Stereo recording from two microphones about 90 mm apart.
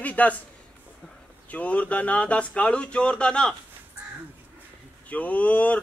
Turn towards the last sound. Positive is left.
turn(degrees=15)  # may be behind; listen again after turning